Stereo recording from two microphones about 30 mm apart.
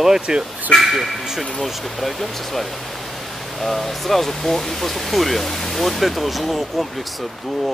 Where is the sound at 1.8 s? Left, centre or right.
Centre.